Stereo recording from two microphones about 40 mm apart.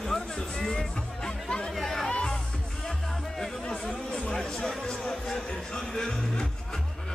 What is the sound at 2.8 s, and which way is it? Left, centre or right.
Music, centre.